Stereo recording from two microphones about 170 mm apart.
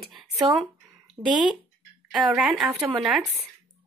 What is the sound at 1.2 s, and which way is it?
Speech, 15° right (ahead or behind).